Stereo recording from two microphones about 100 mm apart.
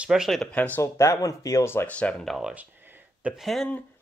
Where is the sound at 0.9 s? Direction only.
30° left (ahead or behind).